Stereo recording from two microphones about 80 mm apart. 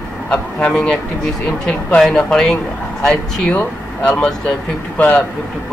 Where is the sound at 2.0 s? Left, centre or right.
Centre.